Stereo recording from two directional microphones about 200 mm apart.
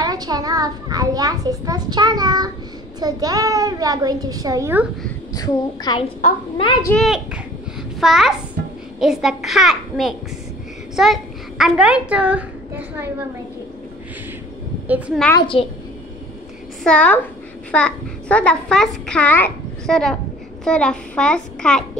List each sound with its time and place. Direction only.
0.0 s a child's voice: 20° right (ahead or behind)
5.3 s speech: 20° left (ahead or behind)
6.9 s a child's voice: 10° left (ahead or behind)
8.0 s a child's voice: centre (ahead or behind)
14.9 s a woman's voice: 5° right (ahead or behind)
15.5 s speech: 30° left (ahead or behind)
16.8 s a child's voice: 5° left (ahead or behind)